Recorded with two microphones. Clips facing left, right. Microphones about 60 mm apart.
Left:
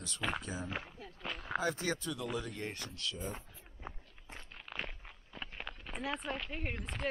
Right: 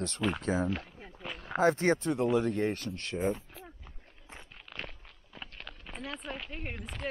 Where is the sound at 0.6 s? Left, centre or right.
Centre.